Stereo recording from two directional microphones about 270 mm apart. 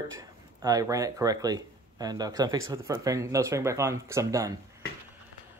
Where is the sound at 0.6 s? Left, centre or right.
Centre.